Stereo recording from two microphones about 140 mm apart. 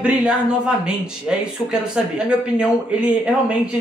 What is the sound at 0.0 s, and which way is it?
Speech, 5° right (ahead or behind).